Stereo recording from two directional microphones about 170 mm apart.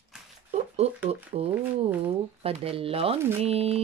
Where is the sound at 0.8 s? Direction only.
40° right (ahead or behind).